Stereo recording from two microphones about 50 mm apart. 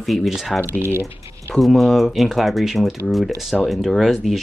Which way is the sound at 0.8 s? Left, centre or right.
Right.